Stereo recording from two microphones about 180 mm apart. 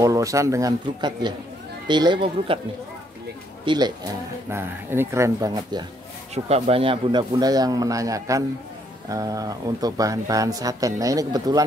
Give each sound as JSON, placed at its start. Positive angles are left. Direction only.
{"t": 0.0, "sound": "speech", "side_deg": -20}
{"t": 3.6, "sound": "speech", "side_deg": -25}
{"t": 6.3, "sound": "speech", "side_deg": -35}